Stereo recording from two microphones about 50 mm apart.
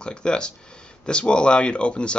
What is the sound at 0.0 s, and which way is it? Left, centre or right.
Speech, centre.